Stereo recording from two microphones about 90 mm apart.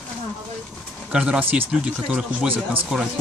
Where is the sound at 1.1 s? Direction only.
10° right (ahead or behind).